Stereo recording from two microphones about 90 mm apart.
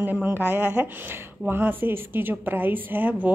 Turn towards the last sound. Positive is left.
turn(degrees=-20)  # may be behind; listen again after turning